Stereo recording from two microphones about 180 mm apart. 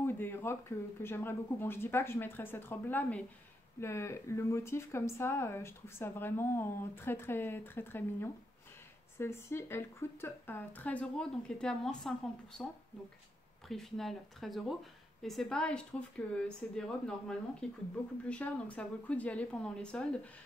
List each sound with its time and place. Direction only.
0.0 s speech: 10° left (ahead or behind)
13.7 s speech: centre (ahead or behind)